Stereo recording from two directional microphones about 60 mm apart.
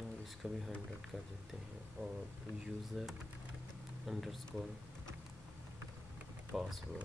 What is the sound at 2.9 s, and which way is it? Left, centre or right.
Speech, centre.